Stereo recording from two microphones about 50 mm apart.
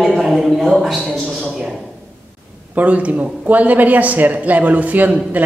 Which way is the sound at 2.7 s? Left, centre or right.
Right.